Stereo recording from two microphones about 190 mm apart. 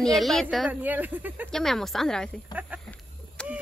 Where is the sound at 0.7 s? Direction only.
10° right (ahead or behind).